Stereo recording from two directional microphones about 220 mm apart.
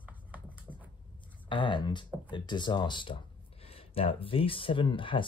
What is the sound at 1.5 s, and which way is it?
Speech, 20° left (ahead or behind).